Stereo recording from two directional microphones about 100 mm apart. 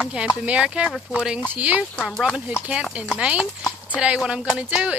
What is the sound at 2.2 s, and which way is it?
Speech, 10° right (ahead or behind).